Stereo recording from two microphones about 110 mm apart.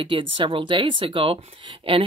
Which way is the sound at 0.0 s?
50° right (ahead or behind).